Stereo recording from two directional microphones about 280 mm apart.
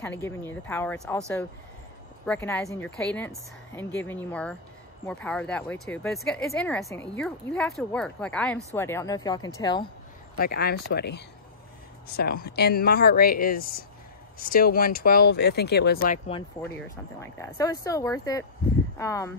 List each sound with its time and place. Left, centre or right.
0.0 s speech: centre
2.2 s speech: centre
10.4 s speech: left
16.7 s speech: centre